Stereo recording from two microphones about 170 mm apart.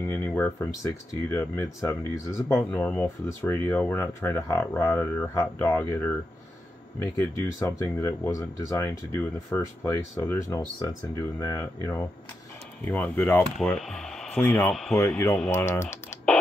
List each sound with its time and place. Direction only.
0.1 s speech: 10° left (ahead or behind)
13.6 s speech: centre (ahead or behind)
14.4 s speech: 15° left (ahead or behind)
14.7 s speech: centre (ahead or behind)
15.0 s speech: 15° left (ahead or behind)